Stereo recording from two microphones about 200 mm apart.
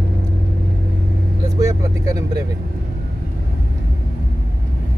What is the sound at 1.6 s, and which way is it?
Vehicle, 15° right (ahead or behind).